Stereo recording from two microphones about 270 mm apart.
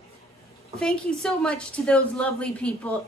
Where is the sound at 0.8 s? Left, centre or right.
Centre.